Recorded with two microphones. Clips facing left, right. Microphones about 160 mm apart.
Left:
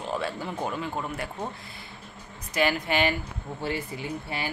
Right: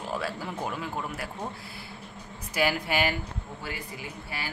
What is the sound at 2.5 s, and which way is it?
Speech, 10° right (ahead or behind).